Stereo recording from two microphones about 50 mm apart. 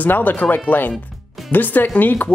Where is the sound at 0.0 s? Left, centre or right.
Left.